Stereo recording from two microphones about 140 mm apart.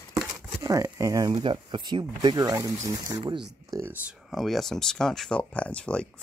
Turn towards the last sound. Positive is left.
turn(degrees=10)  # may be behind; listen again after turning